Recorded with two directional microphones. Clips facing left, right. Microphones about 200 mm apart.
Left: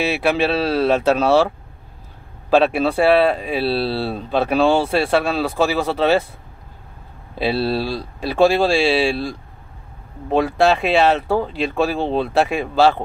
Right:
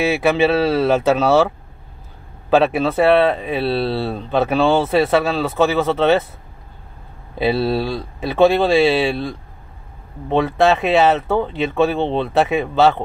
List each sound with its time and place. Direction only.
0.4 s speech: centre (ahead or behind)
2.5 s speech: centre (ahead or behind)
7.3 s speech: centre (ahead or behind)